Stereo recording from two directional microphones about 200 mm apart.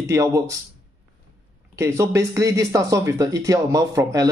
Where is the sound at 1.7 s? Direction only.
15° right (ahead or behind).